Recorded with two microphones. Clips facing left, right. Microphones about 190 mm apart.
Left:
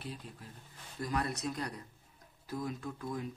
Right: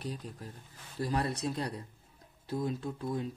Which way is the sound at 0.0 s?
40° right (ahead or behind).